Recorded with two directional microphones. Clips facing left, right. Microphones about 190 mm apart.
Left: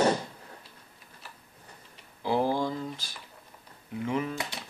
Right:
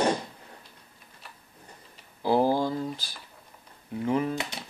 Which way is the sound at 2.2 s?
35° right (ahead or behind).